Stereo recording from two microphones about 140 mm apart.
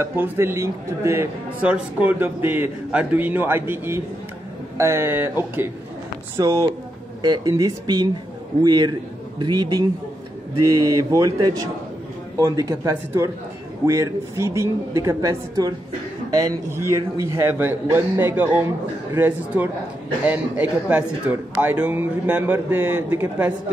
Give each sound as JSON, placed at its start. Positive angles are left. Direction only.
{"t": 0.0, "sound": "a man's voice", "side_deg": -15}
{"t": 6.3, "sound": "a woman's voice", "side_deg": -20}
{"t": 7.2, "sound": "a woman's voice", "side_deg": -30}
{"t": 10.9, "sound": "a woman's voice", "side_deg": -25}